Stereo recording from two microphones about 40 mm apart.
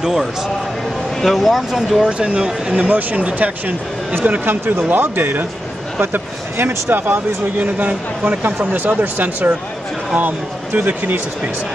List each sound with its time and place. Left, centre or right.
0.0 s speech: centre
1.2 s speech: centre
2.0 s speech: right
2.7 s speech: right
4.5 s speech: right
7.5 s a man's voice: right